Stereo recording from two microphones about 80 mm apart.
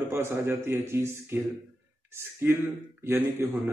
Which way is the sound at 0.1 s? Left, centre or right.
Right.